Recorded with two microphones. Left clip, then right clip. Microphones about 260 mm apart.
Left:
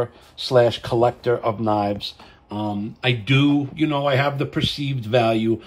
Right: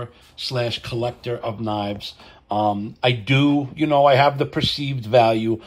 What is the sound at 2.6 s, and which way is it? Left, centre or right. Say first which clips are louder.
Speech: right 1 dB; centre.